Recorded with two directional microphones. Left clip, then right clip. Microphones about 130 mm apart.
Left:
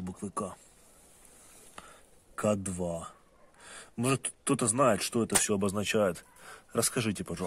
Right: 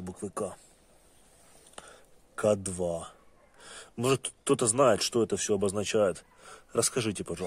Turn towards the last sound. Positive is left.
turn(degrees=-5)  # may be behind; listen again after turning